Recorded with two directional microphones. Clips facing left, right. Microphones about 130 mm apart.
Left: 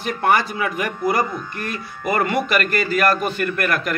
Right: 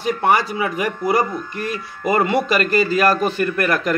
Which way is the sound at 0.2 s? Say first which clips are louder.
Left 1 dB; 25° right (ahead or behind).